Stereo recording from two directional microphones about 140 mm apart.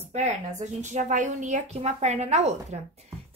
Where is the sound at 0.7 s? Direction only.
65° right (ahead or behind).